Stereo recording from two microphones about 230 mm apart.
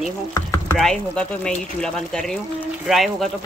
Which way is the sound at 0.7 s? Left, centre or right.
Centre.